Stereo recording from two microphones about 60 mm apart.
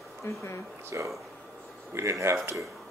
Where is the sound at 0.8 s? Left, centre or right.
Right.